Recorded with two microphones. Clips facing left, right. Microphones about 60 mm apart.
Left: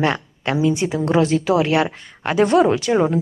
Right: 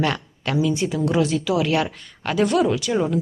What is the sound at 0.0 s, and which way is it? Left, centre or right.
A woman's voice, left.